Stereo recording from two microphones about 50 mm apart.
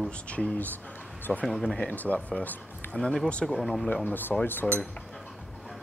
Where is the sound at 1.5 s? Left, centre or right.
Centre.